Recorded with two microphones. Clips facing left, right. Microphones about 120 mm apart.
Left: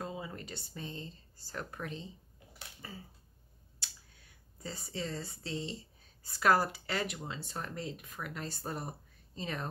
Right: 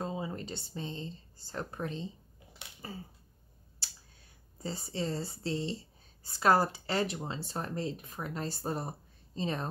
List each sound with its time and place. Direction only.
0.0 s speech: 25° right (ahead or behind)
3.8 s a sound: 30° right (ahead or behind)
6.2 s speech: 30° right (ahead or behind)